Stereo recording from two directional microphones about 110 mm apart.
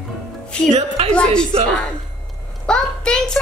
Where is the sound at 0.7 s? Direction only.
85° right.